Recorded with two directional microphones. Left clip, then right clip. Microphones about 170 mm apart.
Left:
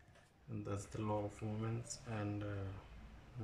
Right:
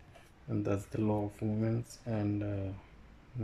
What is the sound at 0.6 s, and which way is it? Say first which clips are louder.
Speech: right 11 dB; 35° right (ahead or behind).